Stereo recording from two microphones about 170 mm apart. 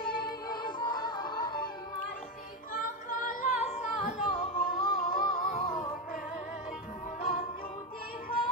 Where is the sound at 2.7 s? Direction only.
50° left (ahead or behind).